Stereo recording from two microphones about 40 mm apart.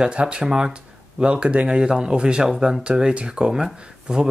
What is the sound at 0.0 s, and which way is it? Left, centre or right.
Speech, right.